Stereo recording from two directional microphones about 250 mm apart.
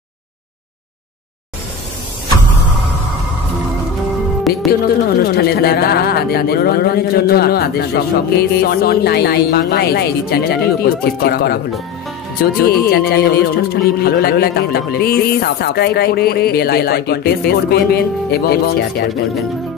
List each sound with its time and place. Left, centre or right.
4.5 s music: centre
5.2 s speech: left